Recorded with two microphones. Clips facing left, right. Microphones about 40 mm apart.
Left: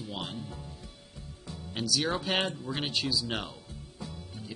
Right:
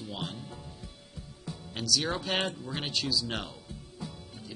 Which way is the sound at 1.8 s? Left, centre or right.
Centre.